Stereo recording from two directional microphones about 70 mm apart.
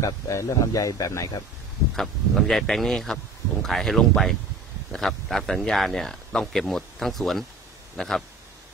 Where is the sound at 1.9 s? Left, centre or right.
Centre.